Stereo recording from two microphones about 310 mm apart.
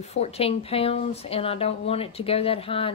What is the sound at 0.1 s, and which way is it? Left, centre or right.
Speech, centre.